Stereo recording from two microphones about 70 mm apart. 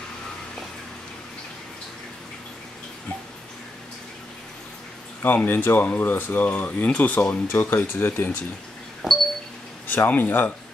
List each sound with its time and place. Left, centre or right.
5.2 s speech: left
7.2 s speech: left
9.0 s a sound: centre
9.8 s speech: left